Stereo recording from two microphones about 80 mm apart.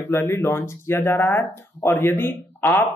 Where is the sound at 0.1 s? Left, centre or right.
Left.